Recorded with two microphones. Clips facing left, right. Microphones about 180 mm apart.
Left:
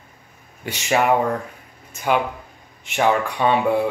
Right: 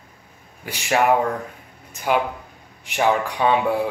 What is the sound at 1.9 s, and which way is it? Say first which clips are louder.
Speech: even; 10° right (ahead or behind).